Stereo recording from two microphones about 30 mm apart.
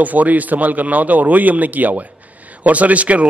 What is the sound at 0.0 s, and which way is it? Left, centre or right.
A man's voice, right.